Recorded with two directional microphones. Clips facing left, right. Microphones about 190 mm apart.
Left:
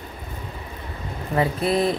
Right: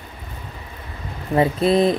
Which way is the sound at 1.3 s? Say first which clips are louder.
Right 5 dB; 25° right (ahead or behind).